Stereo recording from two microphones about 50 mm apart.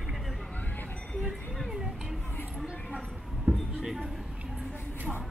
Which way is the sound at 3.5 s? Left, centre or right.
Right.